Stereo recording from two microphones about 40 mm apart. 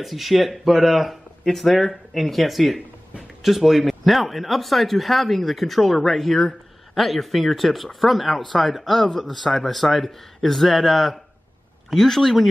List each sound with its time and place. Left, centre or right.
0.0 s speech: centre